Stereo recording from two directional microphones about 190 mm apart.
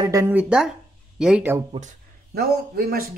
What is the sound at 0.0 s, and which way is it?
Speech, 15° right (ahead or behind).